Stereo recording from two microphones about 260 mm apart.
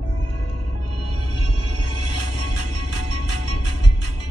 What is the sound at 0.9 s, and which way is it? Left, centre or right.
Music, right.